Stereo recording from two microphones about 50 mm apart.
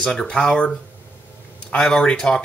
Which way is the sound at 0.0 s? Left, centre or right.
Centre.